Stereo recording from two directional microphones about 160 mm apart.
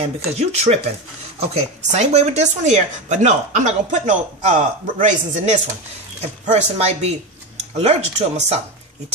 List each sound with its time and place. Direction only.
0.4 s speech: 45° right (ahead or behind)